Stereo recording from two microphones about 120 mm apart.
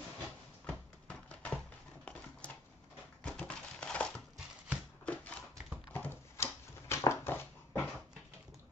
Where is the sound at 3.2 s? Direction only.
10° left (ahead or behind).